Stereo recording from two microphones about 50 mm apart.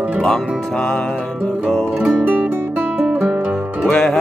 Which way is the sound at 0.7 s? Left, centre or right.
Centre.